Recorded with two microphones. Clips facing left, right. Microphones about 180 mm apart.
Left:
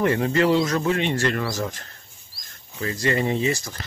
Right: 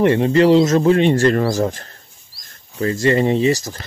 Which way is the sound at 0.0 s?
25° right (ahead or behind).